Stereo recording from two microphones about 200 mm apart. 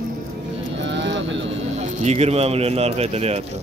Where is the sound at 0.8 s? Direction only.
60° right (ahead or behind).